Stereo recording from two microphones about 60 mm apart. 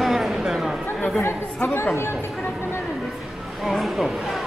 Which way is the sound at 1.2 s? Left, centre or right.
Left.